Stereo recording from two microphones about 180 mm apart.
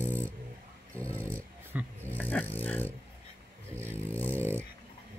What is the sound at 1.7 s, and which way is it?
Roaring cats, 5° right (ahead or behind).